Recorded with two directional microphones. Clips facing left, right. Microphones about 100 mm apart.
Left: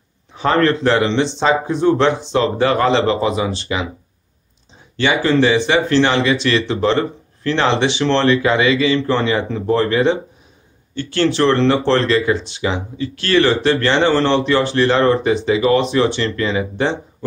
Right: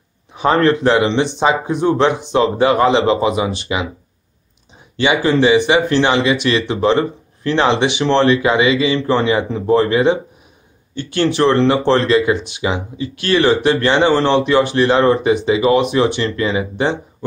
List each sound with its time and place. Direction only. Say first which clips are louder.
0.3 s speech: right 2 dB; 15° right (ahead or behind)
4.9 s speech: right 1 dB; 15° right (ahead or behind)